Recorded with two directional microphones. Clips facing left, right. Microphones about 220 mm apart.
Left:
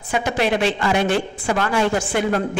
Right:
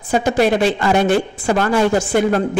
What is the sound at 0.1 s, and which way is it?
A woman's voice, 40° right (ahead or behind).